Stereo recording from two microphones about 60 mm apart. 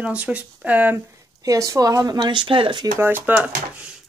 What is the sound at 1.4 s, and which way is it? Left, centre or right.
Speech, right.